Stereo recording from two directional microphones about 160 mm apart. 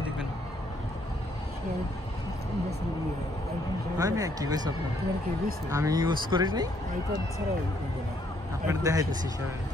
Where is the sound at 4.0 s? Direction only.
20° right (ahead or behind).